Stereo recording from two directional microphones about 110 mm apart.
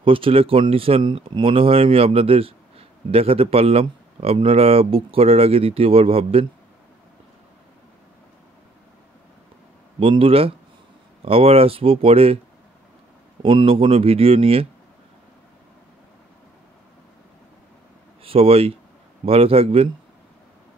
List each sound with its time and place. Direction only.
0.0 s speech: 55° right (ahead or behind)
9.9 s speech: 55° right (ahead or behind)
13.4 s speech: 55° right (ahead or behind)
18.2 s speech: 60° right (ahead or behind)